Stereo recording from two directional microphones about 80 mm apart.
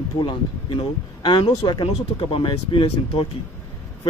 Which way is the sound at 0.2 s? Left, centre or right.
Left.